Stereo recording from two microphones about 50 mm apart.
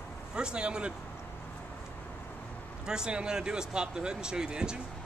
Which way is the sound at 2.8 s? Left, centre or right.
Centre.